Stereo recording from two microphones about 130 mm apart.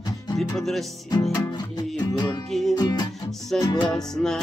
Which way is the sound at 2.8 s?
35° left (ahead or behind).